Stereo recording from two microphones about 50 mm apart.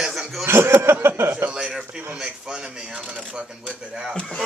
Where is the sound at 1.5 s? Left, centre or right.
Centre.